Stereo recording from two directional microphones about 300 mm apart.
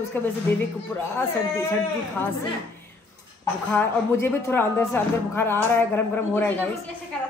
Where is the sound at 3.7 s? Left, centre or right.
Centre.